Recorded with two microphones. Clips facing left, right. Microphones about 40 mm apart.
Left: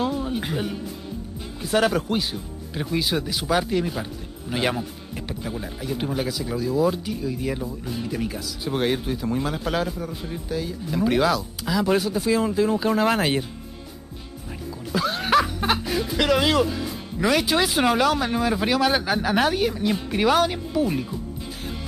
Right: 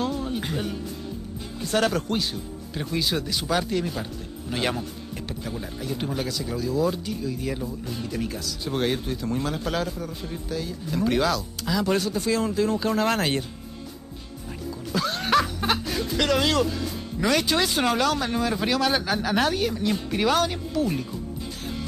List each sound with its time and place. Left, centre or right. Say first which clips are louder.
0.0 s music: left 2 dB; centre
1.6 s speech: left 2 dB; centre
14.9 s speech: left 2 dB; centre